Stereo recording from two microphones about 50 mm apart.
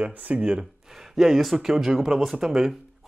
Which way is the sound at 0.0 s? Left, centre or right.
Right.